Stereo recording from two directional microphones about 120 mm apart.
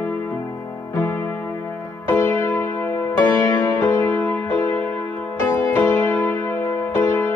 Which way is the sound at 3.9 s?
20° left (ahead or behind).